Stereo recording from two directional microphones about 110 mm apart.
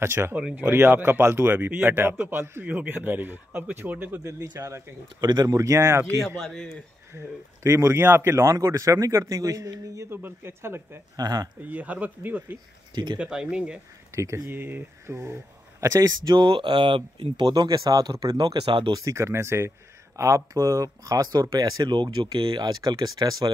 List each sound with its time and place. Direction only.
0.0 s speech: 25° right (ahead or behind)
0.4 s speech: 10° right (ahead or behind)
0.7 s speech: 20° right (ahead or behind)
5.2 s speech: 40° right (ahead or behind)
6.2 s a man's voice: centre (ahead or behind)
7.1 s speech: 25° right (ahead or behind)
11.1 s speech: 35° right (ahead or behind)
11.6 s speech: 15° right (ahead or behind)
12.9 s speech: 40° right (ahead or behind)
13.2 s speech: 10° right (ahead or behind)
14.1 s speech: 25° right (ahead or behind); by 18.9 s 45° right (ahead or behind)
18.9 s speech: 30° right (ahead or behind)